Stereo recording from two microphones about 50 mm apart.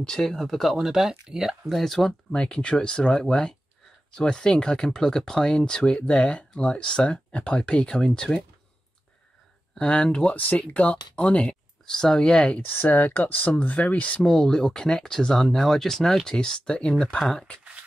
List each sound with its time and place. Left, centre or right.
0.0 s speech: centre
0.4 s speech: centre
1.7 s speech: centre
2.3 s speech: centre
9.8 s speech: centre
10.3 s speech: left
11.9 s speech: centre
12.6 s speech: left
14.2 s speech: centre
17.2 s speech: centre